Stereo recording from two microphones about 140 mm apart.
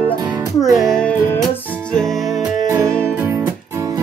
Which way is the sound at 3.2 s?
15° right (ahead or behind).